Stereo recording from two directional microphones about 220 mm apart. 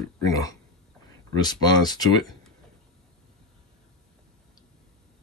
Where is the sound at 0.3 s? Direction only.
15° left (ahead or behind).